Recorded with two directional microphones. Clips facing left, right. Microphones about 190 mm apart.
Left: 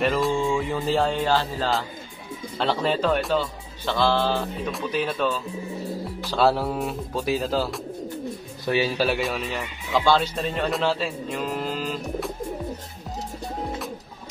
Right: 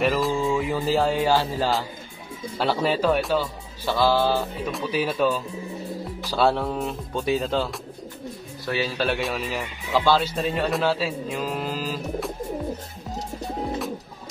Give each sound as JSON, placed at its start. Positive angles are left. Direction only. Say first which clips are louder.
{"t": 0.0, "sound": "music", "louder": "even", "side_deg": 0}
{"t": 2.5, "sound": "speech", "louder": "right 1 dB", "side_deg": -10}
{"t": 8.9, "sound": "speech", "louder": "left 1 dB", "side_deg": 5}